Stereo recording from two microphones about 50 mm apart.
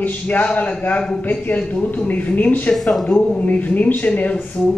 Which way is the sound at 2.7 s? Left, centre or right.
Centre.